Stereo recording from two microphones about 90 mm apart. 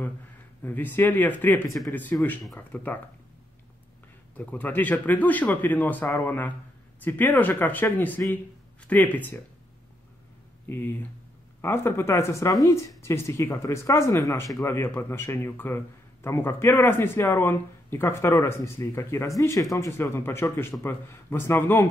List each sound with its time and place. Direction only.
0.6 s speech: 20° left (ahead or behind)
4.4 s speech: 20° left (ahead or behind)
10.7 s speech: 20° left (ahead or behind); by 19.9 s 35° left (ahead or behind)
19.9 s speech: 25° left (ahead or behind)